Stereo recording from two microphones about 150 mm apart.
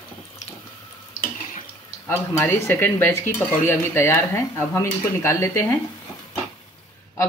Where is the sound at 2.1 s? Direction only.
15° left (ahead or behind).